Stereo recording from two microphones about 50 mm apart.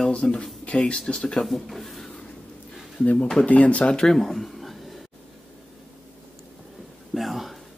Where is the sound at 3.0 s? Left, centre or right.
Left.